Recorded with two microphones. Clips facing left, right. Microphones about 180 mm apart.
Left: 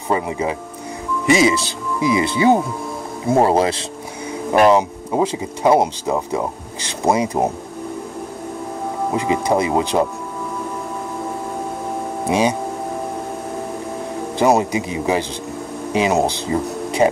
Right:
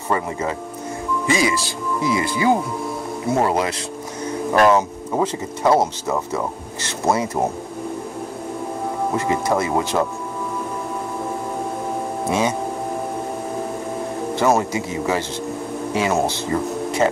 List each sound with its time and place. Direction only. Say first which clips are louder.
0.1 s speech: left 2 dB; 15° left (ahead or behind)
4.3 s speech: left 2 dB; 15° left (ahead or behind)
9.1 s speech: left 3 dB; 15° left (ahead or behind)
12.3 s speech: left 3 dB; 15° left (ahead or behind)
14.4 s speech: left 3 dB; 15° left (ahead or behind)